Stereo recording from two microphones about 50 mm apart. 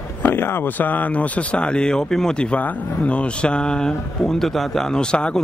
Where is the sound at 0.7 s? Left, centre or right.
Left.